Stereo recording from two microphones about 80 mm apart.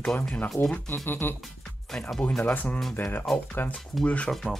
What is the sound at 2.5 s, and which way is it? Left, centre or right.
Speech, centre.